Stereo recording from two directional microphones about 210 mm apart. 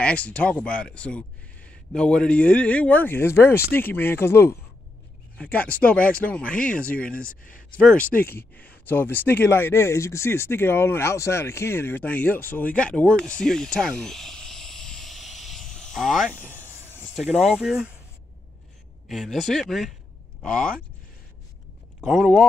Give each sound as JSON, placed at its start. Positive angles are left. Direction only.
{"t": 0.0, "sound": "speech", "side_deg": 5}
{"t": 7.4, "sound": "speech", "side_deg": 40}
{"t": 8.1, "sound": "speech", "side_deg": 10}
{"t": 17.2, "sound": "speech", "side_deg": 0}
{"t": 19.0, "sound": "speech", "side_deg": 0}
{"t": 22.0, "sound": "speech", "side_deg": 0}